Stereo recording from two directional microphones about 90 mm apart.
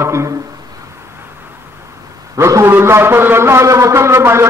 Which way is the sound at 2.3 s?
35° right (ahead or behind).